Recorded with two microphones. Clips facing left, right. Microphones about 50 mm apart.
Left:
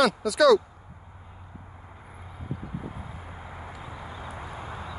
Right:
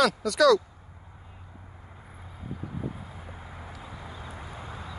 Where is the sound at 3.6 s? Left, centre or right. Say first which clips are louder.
Left 2 dB; centre.